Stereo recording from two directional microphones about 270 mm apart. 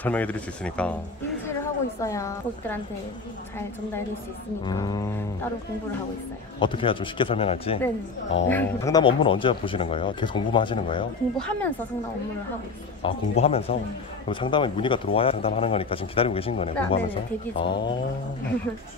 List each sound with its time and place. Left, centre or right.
0.0 s a woman's voice: centre
4.6 s speech: centre
6.6 s speech: centre
8.5 s speech: centre
11.3 s speech: centre
13.0 s speech: left